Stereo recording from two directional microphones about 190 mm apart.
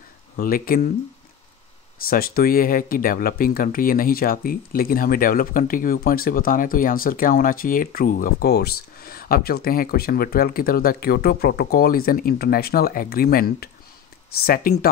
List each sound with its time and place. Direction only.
0.4 s speech: 50° left (ahead or behind)
2.0 s speech: 50° left (ahead or behind)